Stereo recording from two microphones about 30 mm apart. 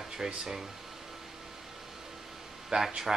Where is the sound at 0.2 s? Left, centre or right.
Centre.